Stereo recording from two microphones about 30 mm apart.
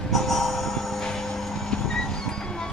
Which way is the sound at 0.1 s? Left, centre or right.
Centre.